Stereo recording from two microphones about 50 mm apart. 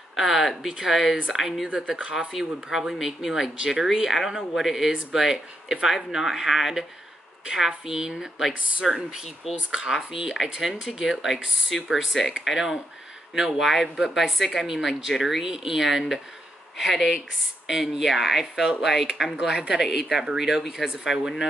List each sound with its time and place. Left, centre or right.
0.1 s speech: centre
1.7 s speech: centre
2.1 s speech: centre